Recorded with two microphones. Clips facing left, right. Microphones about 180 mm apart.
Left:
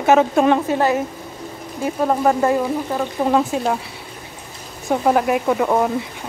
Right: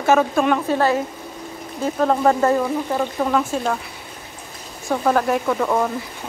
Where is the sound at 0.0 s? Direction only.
20° left (ahead or behind).